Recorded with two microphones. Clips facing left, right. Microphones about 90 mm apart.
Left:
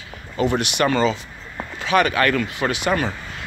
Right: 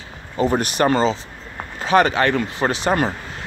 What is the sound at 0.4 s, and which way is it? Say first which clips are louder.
Speech: right 2 dB; 35° right (ahead or behind).